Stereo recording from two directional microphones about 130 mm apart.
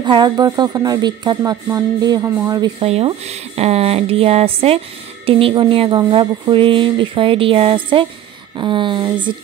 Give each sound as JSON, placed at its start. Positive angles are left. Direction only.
{"t": 0.0, "sound": "speech", "side_deg": -35}
{"t": 2.8, "sound": "speech", "side_deg": -50}